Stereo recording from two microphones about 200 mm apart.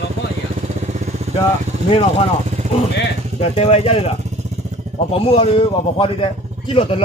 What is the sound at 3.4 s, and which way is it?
A man's voice, 30° left (ahead or behind).